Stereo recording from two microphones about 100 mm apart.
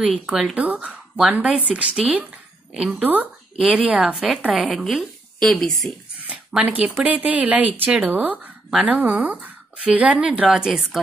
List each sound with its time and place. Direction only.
0.0 s a woman's voice: 5° right (ahead or behind)
3.5 s a woman's voice: centre (ahead or behind)
6.2 s a sound: 10° right (ahead or behind)
7.1 s speech: 15° right (ahead or behind)
10.5 s a woman's voice: 5° right (ahead or behind)